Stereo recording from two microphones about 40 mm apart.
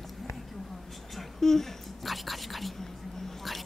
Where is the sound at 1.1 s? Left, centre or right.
Centre.